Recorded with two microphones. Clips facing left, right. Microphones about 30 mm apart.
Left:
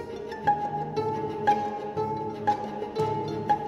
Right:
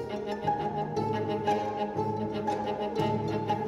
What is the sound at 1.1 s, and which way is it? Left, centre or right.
Music, right.